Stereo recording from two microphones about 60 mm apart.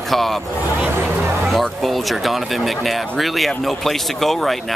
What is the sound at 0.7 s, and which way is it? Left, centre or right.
Vehicle, right.